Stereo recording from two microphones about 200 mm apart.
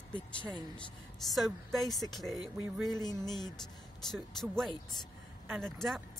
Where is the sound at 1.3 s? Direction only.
Centre (ahead or behind).